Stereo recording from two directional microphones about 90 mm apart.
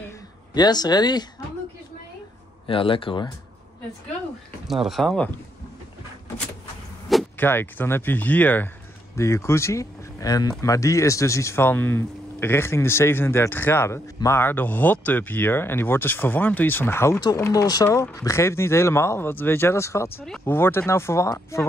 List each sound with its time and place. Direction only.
0.6 s speech: 50° left (ahead or behind)
2.6 s speech: 75° left (ahead or behind)
4.8 s speech: 5° left (ahead or behind)
7.3 s speech: 20° left (ahead or behind)
9.1 s speech: 35° left (ahead or behind)
17.4 s speech: 40° left (ahead or behind)